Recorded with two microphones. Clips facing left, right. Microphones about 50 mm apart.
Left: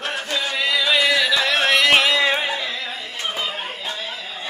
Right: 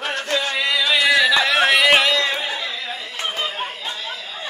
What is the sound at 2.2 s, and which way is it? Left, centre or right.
Music, centre.